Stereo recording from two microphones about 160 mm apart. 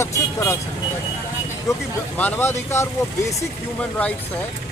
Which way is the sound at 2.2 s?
15° left (ahead or behind).